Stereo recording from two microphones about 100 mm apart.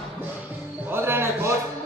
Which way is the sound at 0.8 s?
25° right (ahead or behind).